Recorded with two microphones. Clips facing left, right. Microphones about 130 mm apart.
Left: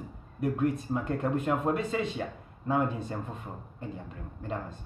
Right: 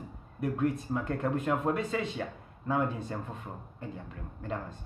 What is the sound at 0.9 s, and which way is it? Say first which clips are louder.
Speech: left 1 dB; 20° left (ahead or behind).